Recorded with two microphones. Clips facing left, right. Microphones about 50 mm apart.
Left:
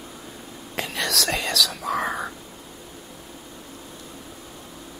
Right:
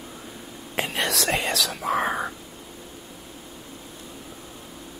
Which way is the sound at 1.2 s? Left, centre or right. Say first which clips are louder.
Even; right.